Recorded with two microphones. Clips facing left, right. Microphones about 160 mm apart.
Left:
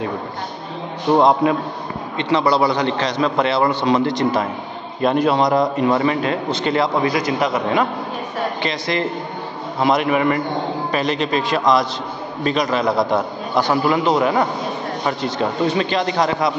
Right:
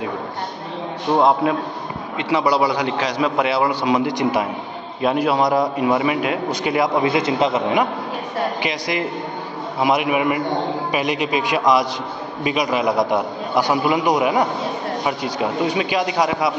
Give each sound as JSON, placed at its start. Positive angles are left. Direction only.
{"t": 1.1, "sound": "a man's voice", "side_deg": 0}
{"t": 7.1, "sound": "a man's voice", "side_deg": -25}